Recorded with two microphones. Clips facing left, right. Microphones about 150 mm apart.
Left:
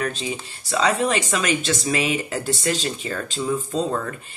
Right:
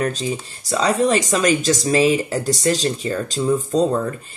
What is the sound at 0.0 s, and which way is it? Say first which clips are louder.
Speech: right 4 dB; 40° right (ahead or behind).